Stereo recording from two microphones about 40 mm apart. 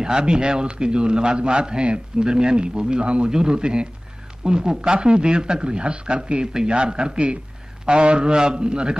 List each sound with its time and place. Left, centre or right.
0.0 s a man's voice: right